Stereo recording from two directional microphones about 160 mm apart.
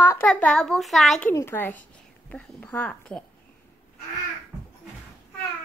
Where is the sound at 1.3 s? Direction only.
15° left (ahead or behind).